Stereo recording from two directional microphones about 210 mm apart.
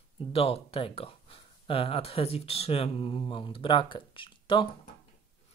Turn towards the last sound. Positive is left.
turn(degrees=25)  # may be behind; listen again after turning